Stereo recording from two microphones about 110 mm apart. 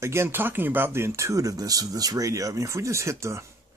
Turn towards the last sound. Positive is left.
turn(degrees=-25)  # may be behind; listen again after turning